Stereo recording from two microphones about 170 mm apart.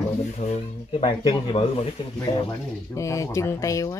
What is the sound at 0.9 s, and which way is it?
Speech, 30° left (ahead or behind).